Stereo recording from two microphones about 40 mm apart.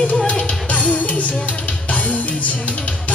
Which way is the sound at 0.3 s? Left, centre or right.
Left.